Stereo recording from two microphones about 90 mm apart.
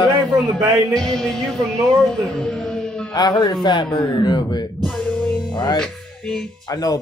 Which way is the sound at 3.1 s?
45° left (ahead or behind).